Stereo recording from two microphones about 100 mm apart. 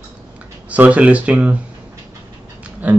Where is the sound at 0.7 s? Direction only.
15° right (ahead or behind).